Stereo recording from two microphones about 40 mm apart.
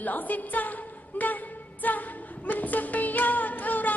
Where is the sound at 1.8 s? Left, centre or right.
Left.